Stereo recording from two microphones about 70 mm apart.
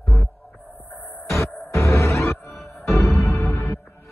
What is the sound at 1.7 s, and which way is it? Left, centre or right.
Music, left.